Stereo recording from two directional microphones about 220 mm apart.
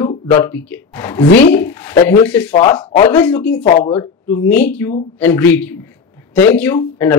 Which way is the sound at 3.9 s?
10° left (ahead or behind).